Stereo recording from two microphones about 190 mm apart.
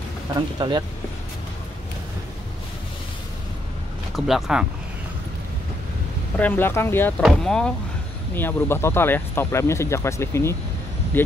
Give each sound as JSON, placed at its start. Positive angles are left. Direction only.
{"t": 0.6, "sound": "speech", "side_deg": -25}
{"t": 4.3, "sound": "speech", "side_deg": -5}
{"t": 6.3, "sound": "speech", "side_deg": 10}